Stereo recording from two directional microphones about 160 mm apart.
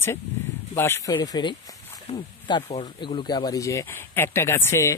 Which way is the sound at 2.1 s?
40° left (ahead or behind).